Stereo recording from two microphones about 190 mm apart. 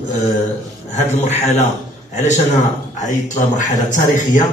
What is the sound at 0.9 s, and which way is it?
A man's voice, 35° left (ahead or behind).